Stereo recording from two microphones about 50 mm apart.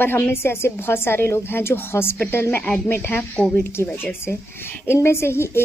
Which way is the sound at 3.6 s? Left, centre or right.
Left.